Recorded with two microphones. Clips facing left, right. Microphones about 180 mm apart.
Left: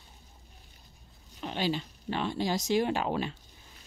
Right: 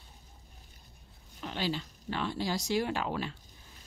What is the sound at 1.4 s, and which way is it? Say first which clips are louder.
Speech: left 3 dB; 20° left (ahead or behind).